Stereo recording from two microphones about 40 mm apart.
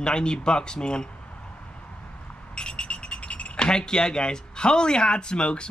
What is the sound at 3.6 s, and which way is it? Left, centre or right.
Speech, centre.